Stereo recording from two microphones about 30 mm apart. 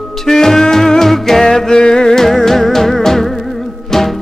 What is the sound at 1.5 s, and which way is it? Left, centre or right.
Music, left.